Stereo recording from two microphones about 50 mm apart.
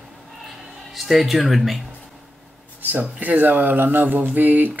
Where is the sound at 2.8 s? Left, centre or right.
Right.